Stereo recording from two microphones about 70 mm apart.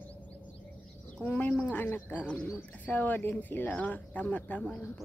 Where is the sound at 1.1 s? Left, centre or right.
Left.